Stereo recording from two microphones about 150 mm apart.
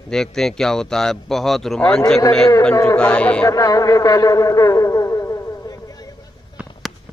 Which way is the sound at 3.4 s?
25° left (ahead or behind).